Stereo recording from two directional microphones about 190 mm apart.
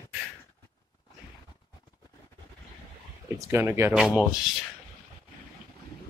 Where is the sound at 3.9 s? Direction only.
Centre (ahead or behind).